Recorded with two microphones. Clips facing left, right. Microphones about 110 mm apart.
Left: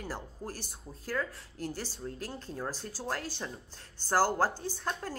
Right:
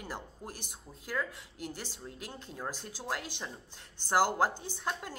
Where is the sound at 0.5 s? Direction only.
20° right (ahead or behind).